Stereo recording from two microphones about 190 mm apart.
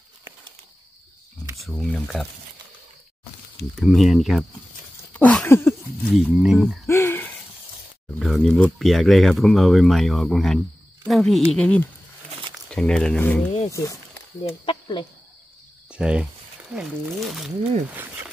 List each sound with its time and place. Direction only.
1.6 s speech: centre (ahead or behind)
3.7 s speech: centre (ahead or behind)
5.1 s a sound: 10° left (ahead or behind)
6.1 s speech: centre (ahead or behind)
6.9 s a sound: 10° left (ahead or behind)
8.2 s speech: centre (ahead or behind)
13.7 s speech: 15° left (ahead or behind)
15.9 s speech: 5° right (ahead or behind)